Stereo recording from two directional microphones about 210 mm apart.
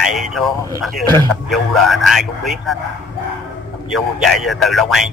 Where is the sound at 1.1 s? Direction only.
15° left (ahead or behind).